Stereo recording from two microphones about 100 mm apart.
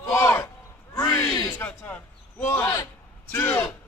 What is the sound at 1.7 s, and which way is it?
A man's voice, 15° left (ahead or behind).